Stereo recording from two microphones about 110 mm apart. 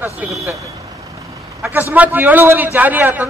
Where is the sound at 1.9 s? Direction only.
15° right (ahead or behind).